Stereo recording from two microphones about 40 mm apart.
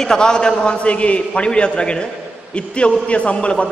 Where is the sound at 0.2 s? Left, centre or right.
Centre.